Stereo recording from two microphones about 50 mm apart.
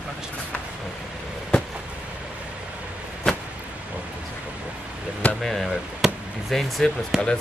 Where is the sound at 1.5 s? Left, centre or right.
Left.